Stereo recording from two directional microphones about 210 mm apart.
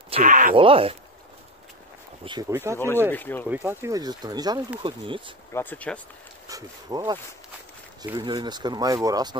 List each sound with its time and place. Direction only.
0.1 s speech: 40° right (ahead or behind)
0.6 s speech: 25° right (ahead or behind)
2.5 s speech: 15° right (ahead or behind)
3.1 s speech: 10° left (ahead or behind)
3.4 s speech: 10° right (ahead or behind)
5.5 s speech: 10° left (ahead or behind)
6.4 s speech: 15° right (ahead or behind)